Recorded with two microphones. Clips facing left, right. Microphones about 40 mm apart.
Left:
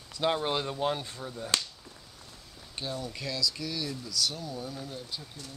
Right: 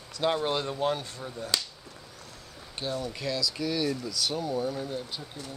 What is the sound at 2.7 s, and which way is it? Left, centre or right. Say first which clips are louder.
Speech: right 3 dB; centre.